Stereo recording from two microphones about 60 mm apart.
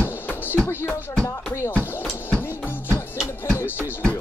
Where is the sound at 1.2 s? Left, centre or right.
Left.